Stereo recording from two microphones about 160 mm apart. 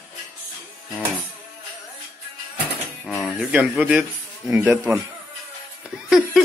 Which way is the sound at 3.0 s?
10° left (ahead or behind).